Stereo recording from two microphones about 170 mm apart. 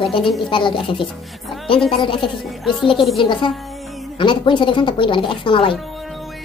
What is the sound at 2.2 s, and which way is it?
Speech, centre (ahead or behind).